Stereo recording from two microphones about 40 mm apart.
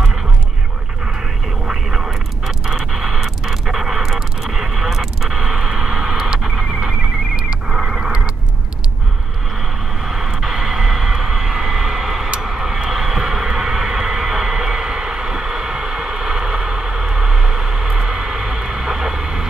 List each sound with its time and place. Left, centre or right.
1.7 s radio: centre
5.3 s a sound: centre
10.0 s vehicle: centre